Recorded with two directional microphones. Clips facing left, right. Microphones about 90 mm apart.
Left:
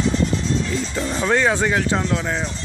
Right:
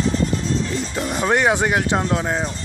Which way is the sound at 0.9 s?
15° right (ahead or behind).